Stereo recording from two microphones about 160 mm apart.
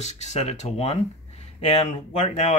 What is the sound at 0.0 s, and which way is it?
Speech, 45° left (ahead or behind).